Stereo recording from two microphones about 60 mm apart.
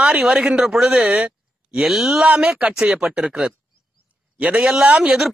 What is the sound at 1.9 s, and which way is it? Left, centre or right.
Speech, centre.